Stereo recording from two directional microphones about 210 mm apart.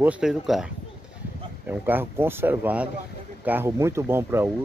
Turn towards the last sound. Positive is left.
turn(degrees=-10)  # may be behind; listen again after turning